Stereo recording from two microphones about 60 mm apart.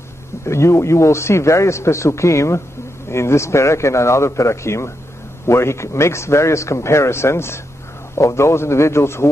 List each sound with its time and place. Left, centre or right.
0.5 s a man's voice: left